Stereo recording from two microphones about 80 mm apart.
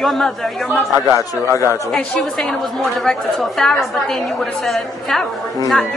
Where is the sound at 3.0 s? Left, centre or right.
Centre.